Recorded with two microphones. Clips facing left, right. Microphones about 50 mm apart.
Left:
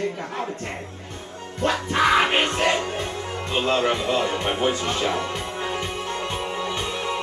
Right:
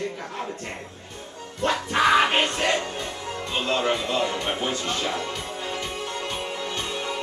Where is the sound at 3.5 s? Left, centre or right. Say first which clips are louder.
Left 3 dB; centre.